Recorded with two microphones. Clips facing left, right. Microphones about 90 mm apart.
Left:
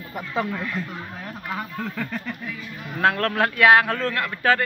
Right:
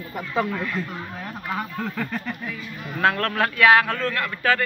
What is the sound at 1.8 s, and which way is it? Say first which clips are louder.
Speech: right 1 dB; 10° right (ahead or behind).